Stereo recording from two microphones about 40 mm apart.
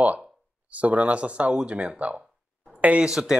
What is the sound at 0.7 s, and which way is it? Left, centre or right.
Speech, right.